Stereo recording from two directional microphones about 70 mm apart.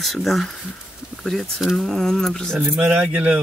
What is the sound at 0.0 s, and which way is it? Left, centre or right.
Speech, centre.